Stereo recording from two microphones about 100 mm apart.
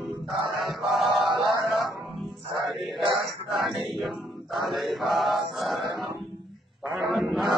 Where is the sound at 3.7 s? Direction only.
55° right (ahead or behind).